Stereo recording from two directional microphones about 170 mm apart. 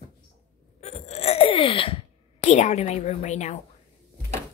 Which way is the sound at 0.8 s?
40° left (ahead or behind).